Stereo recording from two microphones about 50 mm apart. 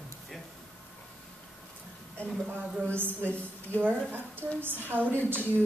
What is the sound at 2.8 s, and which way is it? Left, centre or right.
A woman's voice, right.